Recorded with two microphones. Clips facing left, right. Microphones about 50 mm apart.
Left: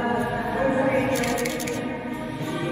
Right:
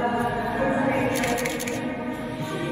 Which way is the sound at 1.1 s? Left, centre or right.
Right.